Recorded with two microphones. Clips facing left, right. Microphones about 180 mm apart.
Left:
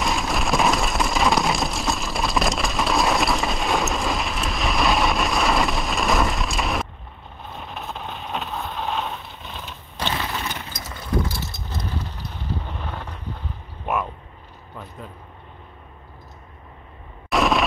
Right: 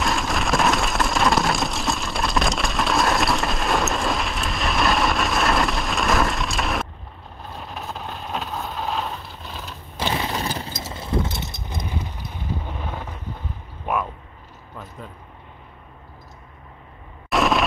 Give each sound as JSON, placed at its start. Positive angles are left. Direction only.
{"t": 0.0, "sound": "a sound", "side_deg": 0}
{"t": 7.4, "sound": "vehicle", "side_deg": 0}
{"t": 10.3, "sound": "vehicle", "side_deg": -35}
{"t": 17.3, "sound": "explosion", "side_deg": 0}